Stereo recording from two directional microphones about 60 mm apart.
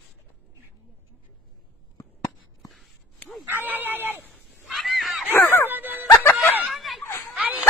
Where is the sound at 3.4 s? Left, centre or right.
Right.